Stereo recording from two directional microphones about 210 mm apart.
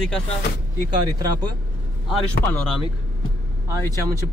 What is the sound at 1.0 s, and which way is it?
Speech, 20° right (ahead or behind).